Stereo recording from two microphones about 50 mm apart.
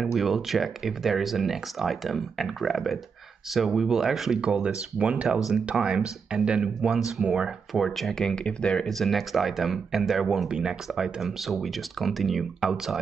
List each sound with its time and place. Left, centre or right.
0.0 s speech: centre
4.9 s speech: right
7.7 s speech: centre
8.2 s speech: centre
8.8 s speech: centre
10.5 s speech: centre
10.9 s speech: centre